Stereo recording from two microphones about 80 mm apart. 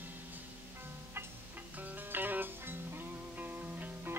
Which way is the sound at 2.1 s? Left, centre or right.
Right.